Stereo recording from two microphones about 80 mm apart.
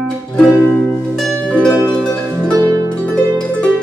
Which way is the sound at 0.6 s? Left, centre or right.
Left.